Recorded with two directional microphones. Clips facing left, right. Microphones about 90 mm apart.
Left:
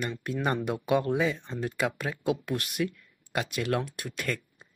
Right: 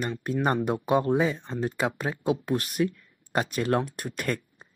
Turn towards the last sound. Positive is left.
turn(degrees=-45)  # may be behind; listen again after turning